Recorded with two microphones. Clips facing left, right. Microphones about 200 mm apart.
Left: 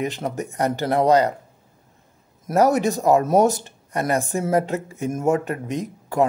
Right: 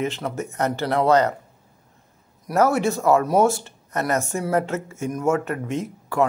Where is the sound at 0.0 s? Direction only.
15° left (ahead or behind).